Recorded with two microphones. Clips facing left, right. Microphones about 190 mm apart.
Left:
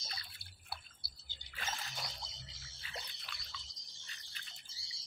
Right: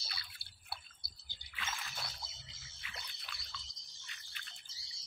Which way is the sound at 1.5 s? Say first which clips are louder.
Left 1 dB; 35° left (ahead or behind).